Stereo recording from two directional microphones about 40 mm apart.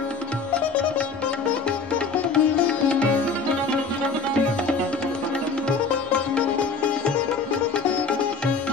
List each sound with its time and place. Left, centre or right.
2.3 s music: left